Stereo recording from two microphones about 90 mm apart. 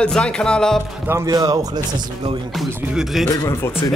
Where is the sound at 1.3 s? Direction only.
40° right (ahead or behind).